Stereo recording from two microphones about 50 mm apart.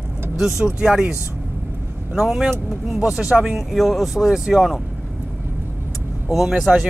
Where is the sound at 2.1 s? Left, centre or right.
Centre.